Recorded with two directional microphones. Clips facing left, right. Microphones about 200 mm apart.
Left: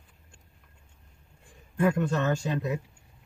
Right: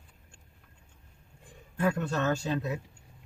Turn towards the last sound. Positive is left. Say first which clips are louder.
# left 1 dB
turn(degrees=15)  # may be behind; listen again after turning